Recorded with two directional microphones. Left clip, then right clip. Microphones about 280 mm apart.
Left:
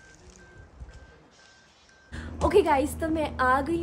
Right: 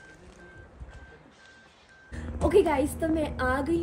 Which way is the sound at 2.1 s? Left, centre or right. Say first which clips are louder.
Left 1 dB; centre.